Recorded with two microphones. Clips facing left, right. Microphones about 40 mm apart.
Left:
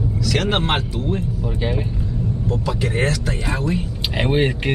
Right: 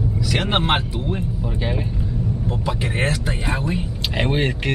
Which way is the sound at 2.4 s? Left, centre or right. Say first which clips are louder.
Left 4 dB; right.